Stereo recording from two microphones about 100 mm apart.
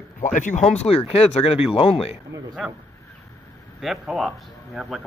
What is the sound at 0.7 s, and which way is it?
Speech, 85° left.